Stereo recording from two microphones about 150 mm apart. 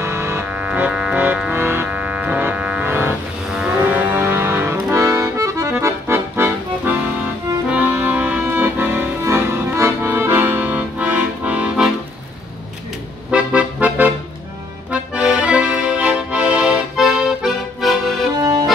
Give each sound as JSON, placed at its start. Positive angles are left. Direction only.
{"t": 0.0, "sound": "music", "side_deg": -15}
{"t": 7.7, "sound": "accordion", "side_deg": -10}
{"t": 13.3, "sound": "music", "side_deg": -10}
{"t": 14.9, "sound": "accordion", "side_deg": -5}
{"t": 18.4, "sound": "accordion", "side_deg": -25}